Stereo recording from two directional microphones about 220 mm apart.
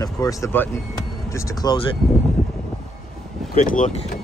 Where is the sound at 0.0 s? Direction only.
15° left (ahead or behind).